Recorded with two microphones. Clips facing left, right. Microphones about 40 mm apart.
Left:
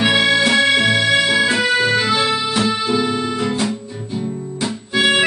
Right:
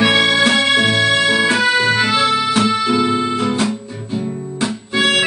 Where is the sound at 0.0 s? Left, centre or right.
Centre.